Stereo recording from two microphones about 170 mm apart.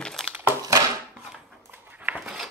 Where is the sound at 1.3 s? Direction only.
5° right (ahead or behind).